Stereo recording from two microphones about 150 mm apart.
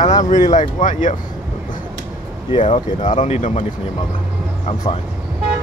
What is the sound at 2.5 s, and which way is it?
Speech, 35° left (ahead or behind).